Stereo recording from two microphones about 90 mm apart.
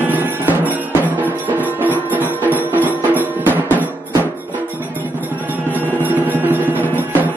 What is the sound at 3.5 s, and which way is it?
Drum, 20° left (ahead or behind).